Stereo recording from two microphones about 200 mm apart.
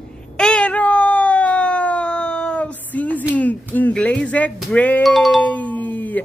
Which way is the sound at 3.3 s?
10° left (ahead or behind).